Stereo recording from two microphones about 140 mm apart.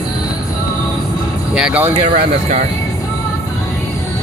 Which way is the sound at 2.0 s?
60° right (ahead or behind).